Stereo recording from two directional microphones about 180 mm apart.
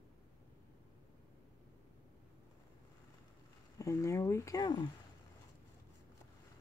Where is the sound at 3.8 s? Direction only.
15° left (ahead or behind).